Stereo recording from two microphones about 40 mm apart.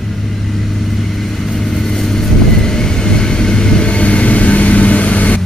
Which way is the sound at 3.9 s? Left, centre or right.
Left.